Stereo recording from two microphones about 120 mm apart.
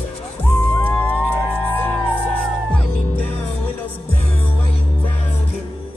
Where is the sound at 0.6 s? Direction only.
15° left (ahead or behind).